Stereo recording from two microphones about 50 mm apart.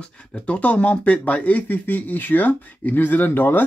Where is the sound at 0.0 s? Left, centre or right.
Left.